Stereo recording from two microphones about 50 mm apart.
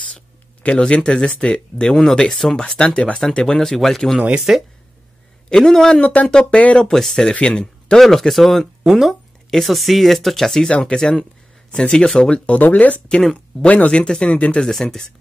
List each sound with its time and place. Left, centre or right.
0.0 s speech: left
2.1 s speech: centre
2.6 s speech: centre
5.5 s speech: centre
5.9 s speech: left
6.9 s speech: centre
12.5 s speech: left
14.6 s speech: centre